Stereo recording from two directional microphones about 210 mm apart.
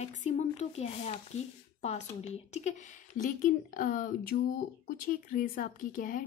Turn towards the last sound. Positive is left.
turn(degrees=40)  # may be behind; listen again after turning